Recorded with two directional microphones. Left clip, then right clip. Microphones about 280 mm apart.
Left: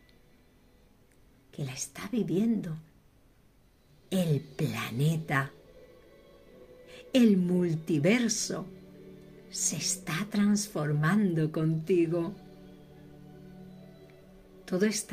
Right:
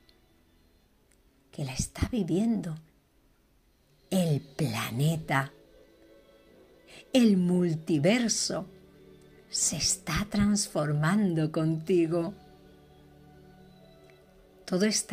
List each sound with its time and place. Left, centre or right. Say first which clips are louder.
1.5 s speech: right 2 dB; right
4.1 s speech: right 1 dB; right
6.9 s speech: even; right
14.6 s a woman's voice: right 1 dB; right